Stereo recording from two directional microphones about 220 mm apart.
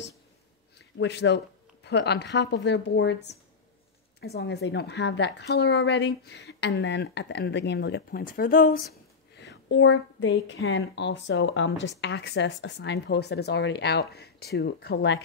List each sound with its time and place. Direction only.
0.7 s a woman's voice: 50° left (ahead or behind)
9.3 s a woman's voice: 55° left (ahead or behind)